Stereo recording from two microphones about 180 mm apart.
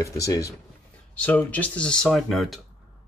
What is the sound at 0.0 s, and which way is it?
Speech, 20° left (ahead or behind).